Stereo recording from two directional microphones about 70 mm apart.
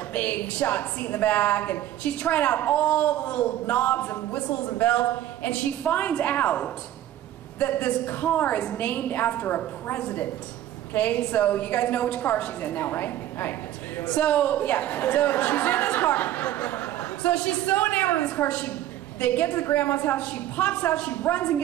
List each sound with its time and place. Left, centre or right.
0.1 s a woman's voice: left
14.0 s a woman's voice: centre